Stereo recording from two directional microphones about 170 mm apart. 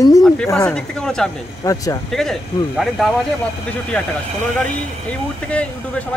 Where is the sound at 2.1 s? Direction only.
Centre (ahead or behind).